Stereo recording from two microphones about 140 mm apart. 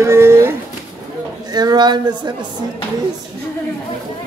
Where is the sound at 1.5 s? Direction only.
30° right (ahead or behind).